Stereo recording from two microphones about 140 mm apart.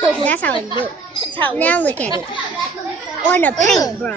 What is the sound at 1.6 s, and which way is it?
Speech, 10° left (ahead or behind).